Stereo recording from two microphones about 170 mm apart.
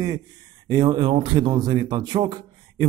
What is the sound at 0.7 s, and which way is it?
Speech, 25° right (ahead or behind).